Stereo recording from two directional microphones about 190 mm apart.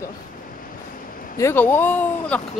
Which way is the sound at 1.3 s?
10° left (ahead or behind).